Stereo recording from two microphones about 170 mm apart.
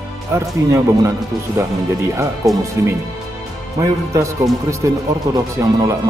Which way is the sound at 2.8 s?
15° right (ahead or behind).